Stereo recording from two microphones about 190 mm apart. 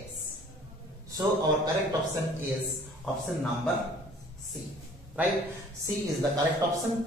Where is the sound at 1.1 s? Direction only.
20° right (ahead or behind).